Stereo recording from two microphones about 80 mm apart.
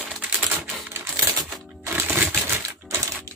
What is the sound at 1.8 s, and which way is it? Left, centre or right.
Music, right.